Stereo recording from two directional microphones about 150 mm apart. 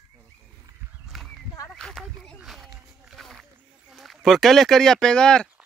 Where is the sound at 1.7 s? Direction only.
5° left (ahead or behind).